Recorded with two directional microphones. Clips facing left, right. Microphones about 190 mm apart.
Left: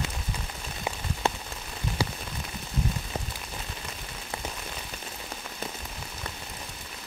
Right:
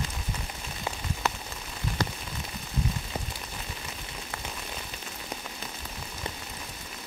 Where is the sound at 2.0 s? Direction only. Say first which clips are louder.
Left 1 dB; 10° left (ahead or behind).